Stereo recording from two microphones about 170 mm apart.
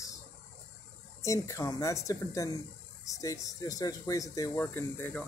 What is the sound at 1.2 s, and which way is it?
Speech, 15° left (ahead or behind).